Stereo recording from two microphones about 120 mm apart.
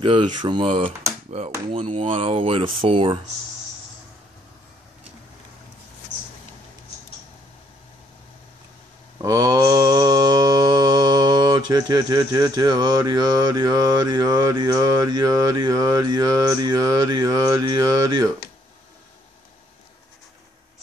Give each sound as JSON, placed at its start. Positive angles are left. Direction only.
{"t": 0.0, "sound": "speech", "side_deg": -45}
{"t": 9.2, "sound": "mantra", "side_deg": -30}